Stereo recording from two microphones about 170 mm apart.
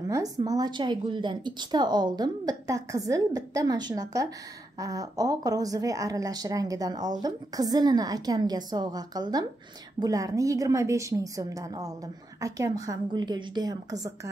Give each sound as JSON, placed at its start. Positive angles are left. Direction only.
{"t": 0.1, "sound": "a woman's voice", "side_deg": -20}